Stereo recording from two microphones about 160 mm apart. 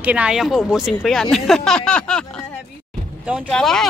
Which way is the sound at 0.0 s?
10° right (ahead or behind).